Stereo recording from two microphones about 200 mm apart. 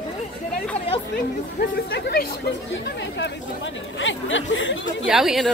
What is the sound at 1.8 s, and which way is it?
Speech, 50° left (ahead or behind).